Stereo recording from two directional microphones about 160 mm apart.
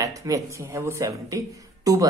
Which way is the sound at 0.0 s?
20° right (ahead or behind).